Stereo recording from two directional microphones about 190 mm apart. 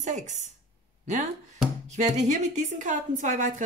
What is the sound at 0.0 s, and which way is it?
A woman's voice, 40° right (ahead or behind).